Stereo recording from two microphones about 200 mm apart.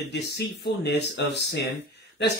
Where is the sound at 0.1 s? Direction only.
60° left (ahead or behind).